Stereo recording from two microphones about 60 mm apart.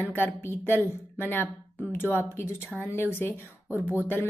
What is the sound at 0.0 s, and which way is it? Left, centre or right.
A woman's voice, left.